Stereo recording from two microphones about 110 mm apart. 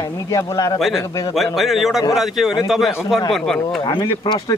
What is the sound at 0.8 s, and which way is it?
A man's voice, centre (ahead or behind).